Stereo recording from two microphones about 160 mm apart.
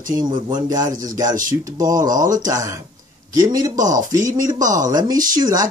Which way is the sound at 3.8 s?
55° right (ahead or behind).